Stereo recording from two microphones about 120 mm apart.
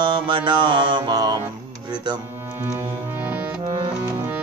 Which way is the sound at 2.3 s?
20° right (ahead or behind).